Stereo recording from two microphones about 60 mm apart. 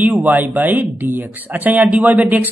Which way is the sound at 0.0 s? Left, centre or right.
Right.